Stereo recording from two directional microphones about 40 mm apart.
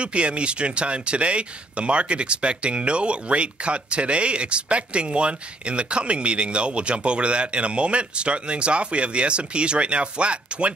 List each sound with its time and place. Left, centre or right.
0.0 s speech: right